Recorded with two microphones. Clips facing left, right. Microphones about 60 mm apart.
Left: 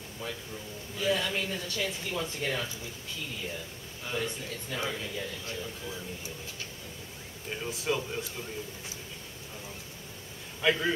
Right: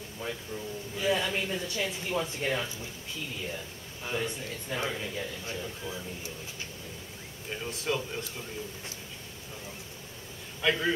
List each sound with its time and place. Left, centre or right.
0.2 s speech: right
4.0 s speech: centre
7.5 s speech: centre
10.6 s a man's voice: centre